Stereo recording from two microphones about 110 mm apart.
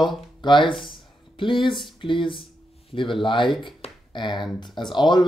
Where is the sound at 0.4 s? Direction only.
45° left (ahead or behind).